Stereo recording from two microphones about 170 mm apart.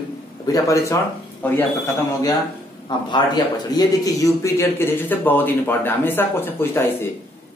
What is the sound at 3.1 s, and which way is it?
A man's voice, 25° left (ahead or behind).